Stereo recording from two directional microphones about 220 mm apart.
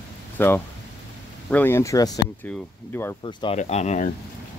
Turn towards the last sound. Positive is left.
turn(degrees=30)  # may be behind; listen again after turning